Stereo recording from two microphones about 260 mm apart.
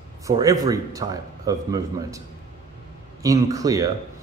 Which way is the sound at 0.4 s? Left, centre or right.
Centre.